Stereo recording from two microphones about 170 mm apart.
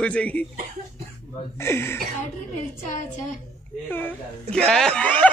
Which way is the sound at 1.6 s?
15° left (ahead or behind).